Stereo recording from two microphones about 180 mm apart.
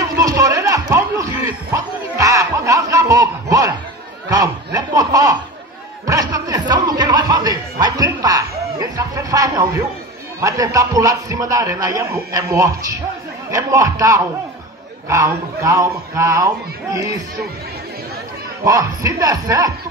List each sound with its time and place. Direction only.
0.2 s a sound: 20° right (ahead or behind)
1.7 s snicker: 15° right (ahead or behind)
6.0 s chuckle: 20° right (ahead or behind)
10.4 s a man's voice: 20° right (ahead or behind)
18.6 s speech: 20° right (ahead or behind)